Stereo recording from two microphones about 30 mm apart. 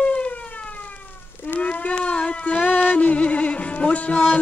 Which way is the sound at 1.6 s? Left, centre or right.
Left.